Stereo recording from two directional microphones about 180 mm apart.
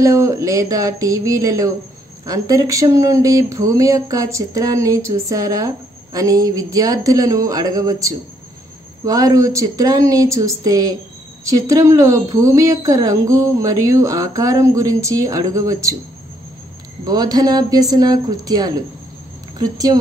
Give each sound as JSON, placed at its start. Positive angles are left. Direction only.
{"t": 0.0, "sound": "a woman's voice", "side_deg": -15}
{"t": 17.0, "sound": "a woman's voice", "side_deg": -20}